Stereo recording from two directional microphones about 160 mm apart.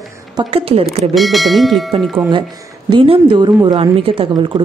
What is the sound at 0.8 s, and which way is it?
Speech, centre (ahead or behind).